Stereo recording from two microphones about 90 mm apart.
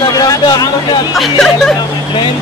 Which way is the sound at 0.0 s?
45° left (ahead or behind).